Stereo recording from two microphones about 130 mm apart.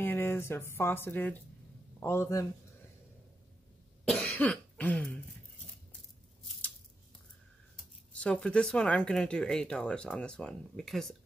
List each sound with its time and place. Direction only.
0.0 s a man's voice: 15° left (ahead or behind)
4.1 s cough: 10° left (ahead or behind)
8.1 s speech: 10° left (ahead or behind)